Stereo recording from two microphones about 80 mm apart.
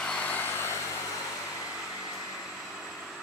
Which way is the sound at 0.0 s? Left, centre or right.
Centre.